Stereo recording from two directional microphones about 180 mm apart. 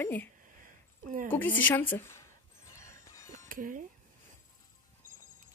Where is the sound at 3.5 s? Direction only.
45° right (ahead or behind).